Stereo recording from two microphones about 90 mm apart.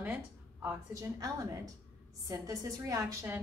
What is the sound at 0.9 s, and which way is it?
A woman's voice, 40° right (ahead or behind).